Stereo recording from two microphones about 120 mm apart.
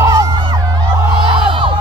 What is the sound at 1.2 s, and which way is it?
Music, 45° right (ahead or behind).